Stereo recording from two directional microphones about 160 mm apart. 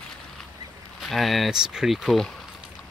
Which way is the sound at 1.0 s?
Centre (ahead or behind).